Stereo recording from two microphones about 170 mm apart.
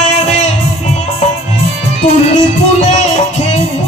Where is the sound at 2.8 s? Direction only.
45° left (ahead or behind).